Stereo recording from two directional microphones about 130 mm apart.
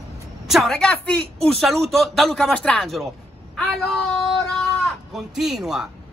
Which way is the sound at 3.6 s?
5° left (ahead or behind).